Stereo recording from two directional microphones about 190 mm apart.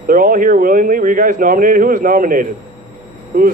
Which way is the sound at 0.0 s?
45° right (ahead or behind).